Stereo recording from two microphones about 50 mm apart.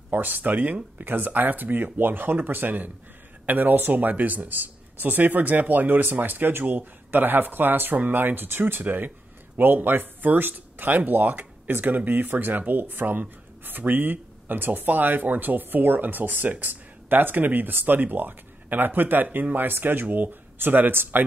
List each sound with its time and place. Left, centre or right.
0.1 s speech: right